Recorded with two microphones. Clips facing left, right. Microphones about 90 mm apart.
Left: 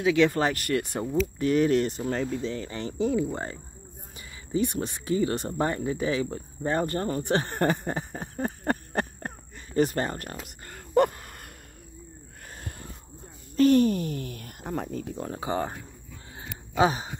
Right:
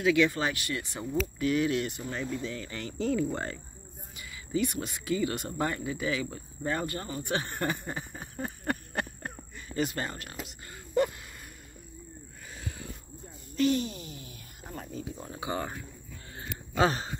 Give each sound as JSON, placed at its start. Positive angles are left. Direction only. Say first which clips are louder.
{"t": 0.0, "sound": "speech", "louder": "left 3 dB", "side_deg": 30}
{"t": 0.3, "sound": "speech", "louder": "left 6 dB", "side_deg": 45}
{"t": 4.2, "sound": "speech", "louder": "left 3 dB", "side_deg": 30}
{"t": 12.5, "sound": "a sound", "louder": "right 1 dB", "side_deg": 50}
{"t": 13.6, "sound": "speech", "louder": "left 8 dB", "side_deg": 50}
{"t": 15.0, "sound": "speech", "louder": "left 6 dB", "side_deg": 55}
{"t": 15.3, "sound": "speech", "louder": "left 4 dB", "side_deg": 35}
{"t": 16.3, "sound": "a sound", "louder": "left 3 dB", "side_deg": 15}